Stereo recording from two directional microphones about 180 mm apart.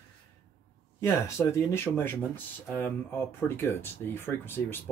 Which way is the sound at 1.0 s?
15° left (ahead or behind).